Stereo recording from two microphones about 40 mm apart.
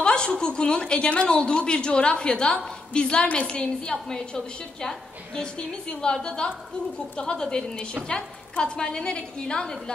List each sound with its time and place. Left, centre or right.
0.0 s a woman's voice: left